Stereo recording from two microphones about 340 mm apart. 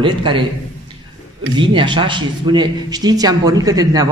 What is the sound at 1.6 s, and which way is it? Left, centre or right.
A man's voice, centre.